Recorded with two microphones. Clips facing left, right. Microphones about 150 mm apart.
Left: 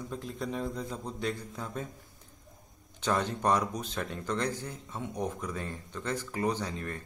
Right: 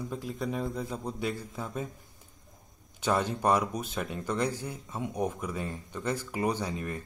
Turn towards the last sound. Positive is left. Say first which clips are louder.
# right 2 dB
turn(degrees=-10)  # may be behind; listen again after turning